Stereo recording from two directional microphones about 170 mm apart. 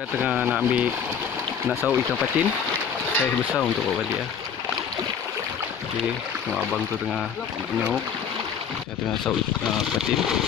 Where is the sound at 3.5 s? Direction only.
5° left (ahead or behind).